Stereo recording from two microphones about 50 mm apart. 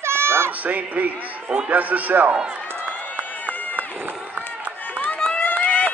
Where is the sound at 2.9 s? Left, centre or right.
Left.